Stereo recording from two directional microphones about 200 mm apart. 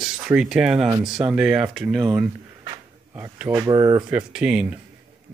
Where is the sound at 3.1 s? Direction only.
10° right (ahead or behind).